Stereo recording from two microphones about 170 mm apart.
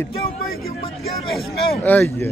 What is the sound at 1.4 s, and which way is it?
Speech, 10° left (ahead or behind).